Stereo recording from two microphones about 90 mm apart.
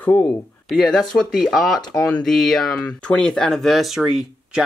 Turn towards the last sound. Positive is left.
turn(degrees=-5)  # may be behind; listen again after turning